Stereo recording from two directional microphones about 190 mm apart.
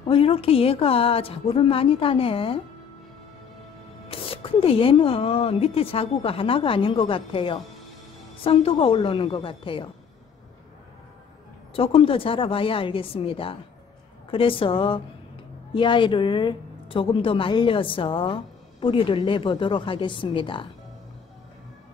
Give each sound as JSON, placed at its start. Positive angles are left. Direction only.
{"t": 0.1, "sound": "a woman's voice", "side_deg": 30}
{"t": 4.1, "sound": "a woman's voice", "side_deg": 30}
{"t": 11.7, "sound": "a woman's voice", "side_deg": 30}